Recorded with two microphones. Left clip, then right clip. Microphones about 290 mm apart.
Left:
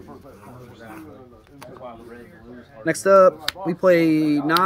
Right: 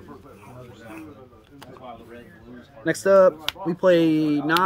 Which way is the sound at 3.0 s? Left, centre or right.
Centre.